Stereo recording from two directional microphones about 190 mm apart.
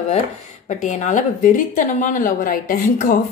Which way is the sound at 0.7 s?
40° left (ahead or behind).